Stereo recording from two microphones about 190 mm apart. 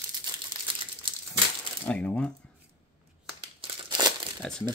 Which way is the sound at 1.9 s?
5° left (ahead or behind).